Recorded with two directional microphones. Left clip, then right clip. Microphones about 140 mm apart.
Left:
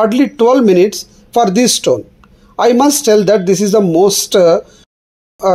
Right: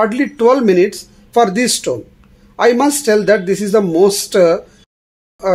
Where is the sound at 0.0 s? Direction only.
25° left (ahead or behind).